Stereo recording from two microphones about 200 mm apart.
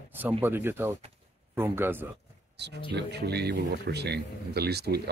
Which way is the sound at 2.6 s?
55° right (ahead or behind).